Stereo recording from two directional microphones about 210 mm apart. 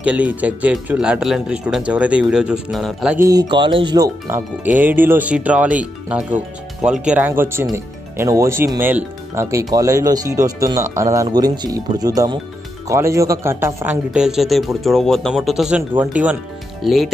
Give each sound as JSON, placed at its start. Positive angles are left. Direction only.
{"t": 0.0, "sound": "speech", "side_deg": -5}